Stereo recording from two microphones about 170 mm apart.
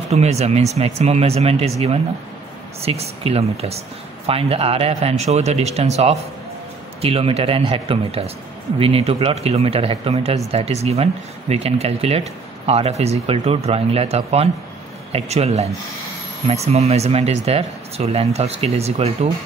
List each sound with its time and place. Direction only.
0.1 s speech: 40° right (ahead or behind)